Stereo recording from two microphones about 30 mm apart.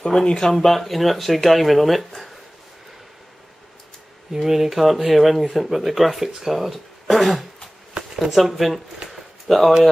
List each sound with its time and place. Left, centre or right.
0.0 s speech: left
0.5 s speech: centre
4.4 s speech: centre
9.1 s a sound: centre